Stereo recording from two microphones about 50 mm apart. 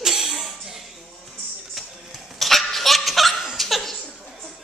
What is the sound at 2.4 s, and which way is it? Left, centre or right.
Laughter, centre.